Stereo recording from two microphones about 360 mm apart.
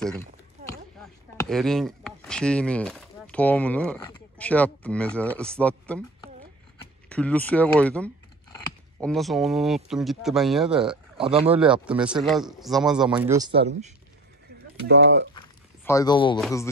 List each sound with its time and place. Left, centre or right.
0.7 s speech: centre
7.1 s a man's voice: centre
14.9 s speech: right
15.3 s walk: centre
16.3 s a man's voice: centre